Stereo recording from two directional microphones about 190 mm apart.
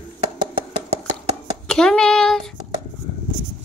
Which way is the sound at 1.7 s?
5° left (ahead or behind).